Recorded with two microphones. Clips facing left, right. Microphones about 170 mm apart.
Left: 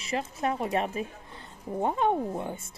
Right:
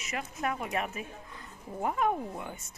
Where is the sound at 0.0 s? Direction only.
30° left (ahead or behind).